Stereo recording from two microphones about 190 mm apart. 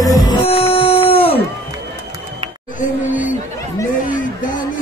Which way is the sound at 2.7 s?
45° left (ahead or behind).